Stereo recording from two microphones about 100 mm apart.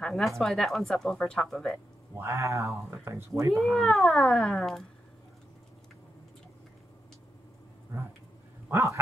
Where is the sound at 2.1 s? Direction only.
25° right (ahead or behind).